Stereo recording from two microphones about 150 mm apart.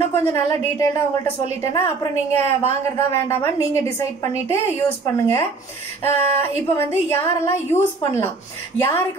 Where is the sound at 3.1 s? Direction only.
20° left (ahead or behind).